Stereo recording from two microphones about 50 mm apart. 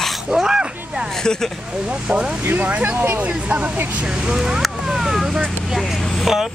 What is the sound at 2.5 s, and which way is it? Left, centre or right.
Speech, right.